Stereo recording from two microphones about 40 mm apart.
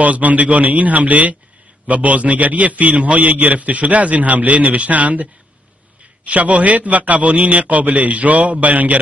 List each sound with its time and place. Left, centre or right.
0.0 s a man's voice: right